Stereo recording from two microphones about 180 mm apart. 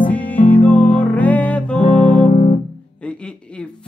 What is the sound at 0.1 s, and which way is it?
Music, 10° left (ahead or behind).